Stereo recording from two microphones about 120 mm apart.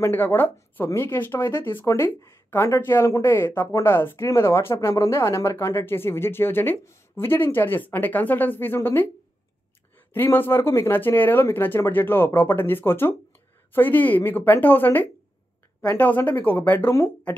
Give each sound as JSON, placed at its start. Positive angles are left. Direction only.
{"t": 0.0, "sound": "speech", "side_deg": 20}